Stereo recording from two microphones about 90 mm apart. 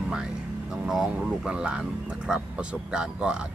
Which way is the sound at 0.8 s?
5° right (ahead or behind).